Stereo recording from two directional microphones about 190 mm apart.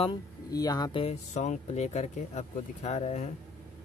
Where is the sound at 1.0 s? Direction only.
35° left (ahead or behind).